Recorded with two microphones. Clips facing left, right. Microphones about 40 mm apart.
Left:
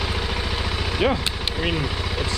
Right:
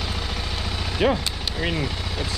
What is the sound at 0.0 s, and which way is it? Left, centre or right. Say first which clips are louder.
Vehicle: left 3 dB; centre.